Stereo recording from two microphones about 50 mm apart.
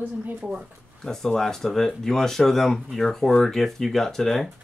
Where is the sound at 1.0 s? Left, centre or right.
Centre.